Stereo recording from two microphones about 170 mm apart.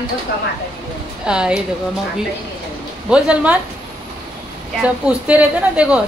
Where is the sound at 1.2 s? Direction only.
5° right (ahead or behind).